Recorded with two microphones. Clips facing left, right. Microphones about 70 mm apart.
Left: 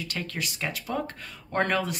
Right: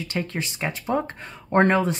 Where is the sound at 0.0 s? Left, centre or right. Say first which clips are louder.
Right 5 dB; right.